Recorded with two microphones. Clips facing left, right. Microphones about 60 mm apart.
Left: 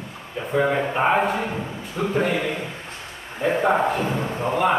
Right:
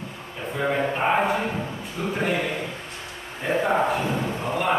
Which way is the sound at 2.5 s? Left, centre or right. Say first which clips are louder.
Left 1 dB; centre.